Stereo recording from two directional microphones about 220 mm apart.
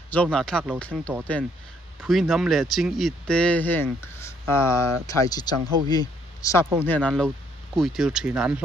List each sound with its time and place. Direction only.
0.1 s speech: 5° left (ahead or behind)
6.6 s speech: 10° right (ahead or behind)
6.9 s speech: 5° left (ahead or behind)